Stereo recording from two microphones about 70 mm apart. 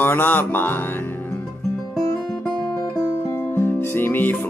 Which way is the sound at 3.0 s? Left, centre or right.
Left.